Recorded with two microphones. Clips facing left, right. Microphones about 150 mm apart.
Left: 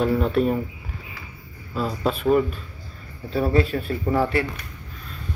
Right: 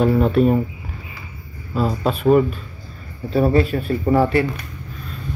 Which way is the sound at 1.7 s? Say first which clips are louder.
Right 5 dB; 40° right (ahead or behind).